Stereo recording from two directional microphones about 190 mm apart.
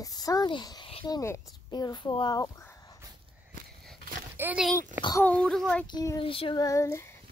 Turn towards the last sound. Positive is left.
turn(degrees=15)  # may be behind; listen again after turning